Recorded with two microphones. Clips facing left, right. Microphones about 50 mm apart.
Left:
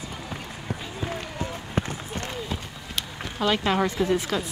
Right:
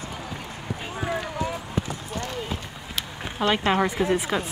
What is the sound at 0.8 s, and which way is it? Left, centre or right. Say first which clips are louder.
Run: right 6 dB; right.